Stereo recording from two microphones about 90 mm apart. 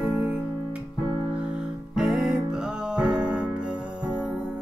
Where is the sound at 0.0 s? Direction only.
20° right (ahead or behind).